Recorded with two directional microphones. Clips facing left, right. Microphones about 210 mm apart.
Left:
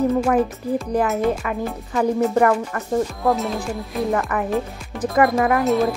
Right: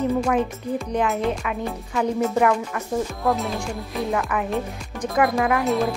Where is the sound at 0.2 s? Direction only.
Centre (ahead or behind).